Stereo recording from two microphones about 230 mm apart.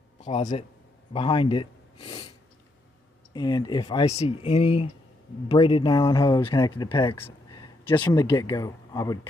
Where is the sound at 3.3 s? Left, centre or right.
Centre.